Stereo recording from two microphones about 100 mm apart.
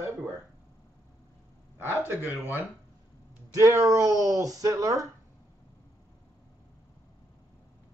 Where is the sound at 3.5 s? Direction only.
35° right (ahead or behind).